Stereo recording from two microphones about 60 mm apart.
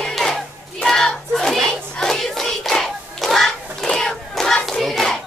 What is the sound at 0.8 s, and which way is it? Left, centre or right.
Hands, centre.